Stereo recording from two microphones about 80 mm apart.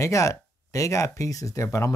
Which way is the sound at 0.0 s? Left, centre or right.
Left.